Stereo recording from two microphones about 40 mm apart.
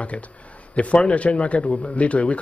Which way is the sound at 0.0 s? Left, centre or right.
Left.